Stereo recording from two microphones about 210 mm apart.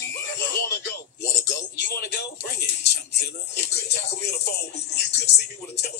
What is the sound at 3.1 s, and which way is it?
Speech, 55° left (ahead or behind).